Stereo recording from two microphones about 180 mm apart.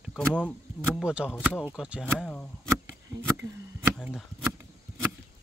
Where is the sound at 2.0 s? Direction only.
10° left (ahead or behind).